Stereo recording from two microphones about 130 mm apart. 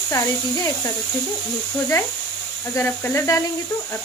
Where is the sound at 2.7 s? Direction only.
20° left (ahead or behind).